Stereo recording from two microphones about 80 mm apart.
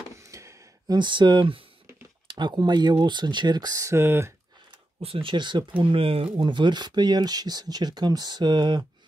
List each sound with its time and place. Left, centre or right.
0.2 s a sound: right
0.8 s speech: right
2.2 s speech: right
3.9 s speech: right
5.2 s speech: right
5.8 s speech: right